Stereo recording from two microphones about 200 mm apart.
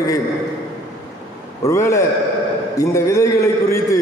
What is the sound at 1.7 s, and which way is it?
A man's voice, 15° left (ahead or behind).